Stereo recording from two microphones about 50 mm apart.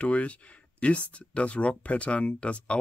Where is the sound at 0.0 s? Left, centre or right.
Left.